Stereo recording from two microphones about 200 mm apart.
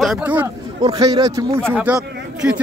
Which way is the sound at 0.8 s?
20° right (ahead or behind).